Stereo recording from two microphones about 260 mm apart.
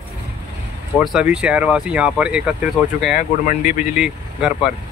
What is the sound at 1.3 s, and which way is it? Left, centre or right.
Speech, centre.